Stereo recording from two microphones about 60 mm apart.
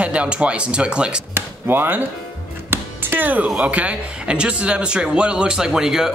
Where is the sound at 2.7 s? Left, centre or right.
Right.